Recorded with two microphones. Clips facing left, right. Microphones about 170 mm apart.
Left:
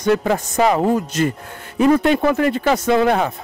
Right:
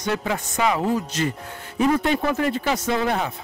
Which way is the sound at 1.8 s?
65° left (ahead or behind).